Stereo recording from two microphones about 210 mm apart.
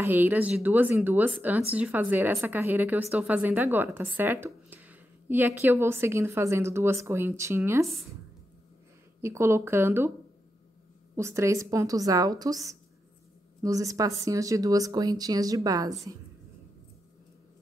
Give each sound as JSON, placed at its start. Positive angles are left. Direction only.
{"t": 0.0, "sound": "speech", "side_deg": -10}
{"t": 9.2, "sound": "speech", "side_deg": -15}
{"t": 11.1, "sound": "speech", "side_deg": -15}